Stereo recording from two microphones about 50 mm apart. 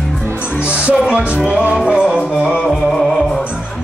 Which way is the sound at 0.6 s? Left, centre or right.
Right.